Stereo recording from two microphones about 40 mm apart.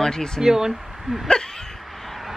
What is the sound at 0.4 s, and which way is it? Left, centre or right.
Speech, centre.